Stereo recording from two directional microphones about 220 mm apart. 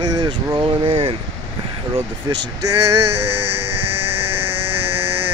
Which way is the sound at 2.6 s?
90° right.